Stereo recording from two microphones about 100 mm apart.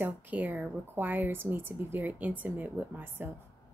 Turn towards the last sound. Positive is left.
turn(degrees=-20)  # may be behind; listen again after turning